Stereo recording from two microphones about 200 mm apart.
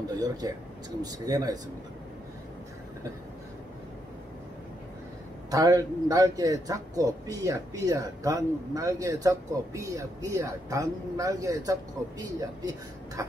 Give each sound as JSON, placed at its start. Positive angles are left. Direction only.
{"t": 0.1, "sound": "a man's voice", "side_deg": -20}
{"t": 5.5, "sound": "speech", "side_deg": -20}